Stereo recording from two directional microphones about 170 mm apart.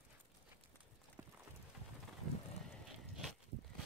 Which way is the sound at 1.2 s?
15° right (ahead or behind).